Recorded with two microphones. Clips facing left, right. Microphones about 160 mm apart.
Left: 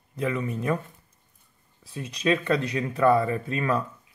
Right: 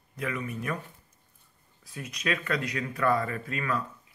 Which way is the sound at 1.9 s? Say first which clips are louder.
Left 7 dB; 30° left (ahead or behind).